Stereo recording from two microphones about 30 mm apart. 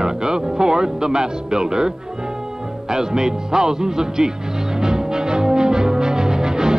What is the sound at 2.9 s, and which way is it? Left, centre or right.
Music, right.